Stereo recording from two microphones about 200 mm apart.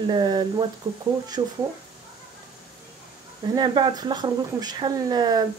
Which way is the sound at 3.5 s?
20° right (ahead or behind).